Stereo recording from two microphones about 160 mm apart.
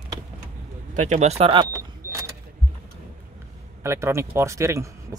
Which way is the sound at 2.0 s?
15° right (ahead or behind).